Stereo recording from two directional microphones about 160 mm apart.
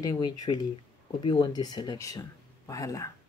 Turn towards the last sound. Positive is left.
turn(degrees=20)  # may be behind; listen again after turning